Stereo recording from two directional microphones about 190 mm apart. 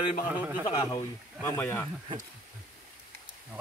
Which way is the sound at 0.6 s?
20° left (ahead or behind).